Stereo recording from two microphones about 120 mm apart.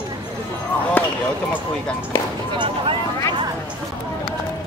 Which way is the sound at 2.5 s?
45° right (ahead or behind).